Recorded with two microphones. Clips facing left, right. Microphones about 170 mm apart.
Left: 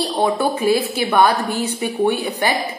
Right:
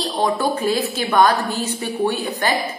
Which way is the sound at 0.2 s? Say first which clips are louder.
Left 1 dB; 10° left (ahead or behind).